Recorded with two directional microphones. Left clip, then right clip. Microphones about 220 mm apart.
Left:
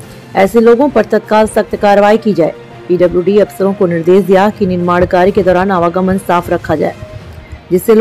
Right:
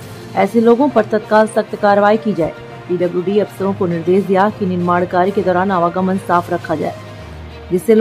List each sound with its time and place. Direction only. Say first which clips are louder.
0.3 s speech: left 5 dB; 10° left (ahead or behind)